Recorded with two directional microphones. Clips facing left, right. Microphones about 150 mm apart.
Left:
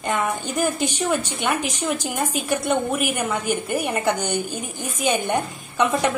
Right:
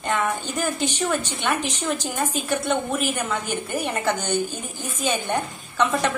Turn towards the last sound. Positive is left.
turn(degrees=15)  # may be behind; listen again after turning